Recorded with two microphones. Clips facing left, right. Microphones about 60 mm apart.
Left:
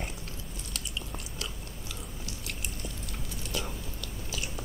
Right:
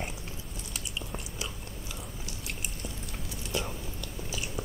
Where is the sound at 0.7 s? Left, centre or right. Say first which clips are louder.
Right 1 dB; centre.